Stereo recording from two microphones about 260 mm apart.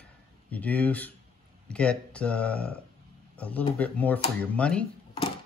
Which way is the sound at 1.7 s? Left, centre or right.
Centre.